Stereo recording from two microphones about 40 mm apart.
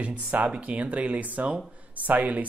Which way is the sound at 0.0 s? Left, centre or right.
Right.